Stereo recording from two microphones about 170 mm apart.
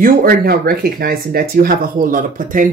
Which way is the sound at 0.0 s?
55° right (ahead or behind).